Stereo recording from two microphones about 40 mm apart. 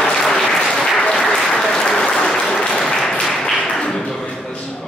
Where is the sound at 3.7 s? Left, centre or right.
Centre.